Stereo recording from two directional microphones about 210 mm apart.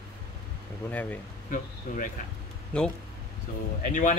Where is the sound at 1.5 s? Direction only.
40° left (ahead or behind).